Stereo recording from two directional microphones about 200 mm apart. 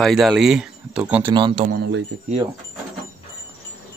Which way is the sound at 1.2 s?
25° right (ahead or behind).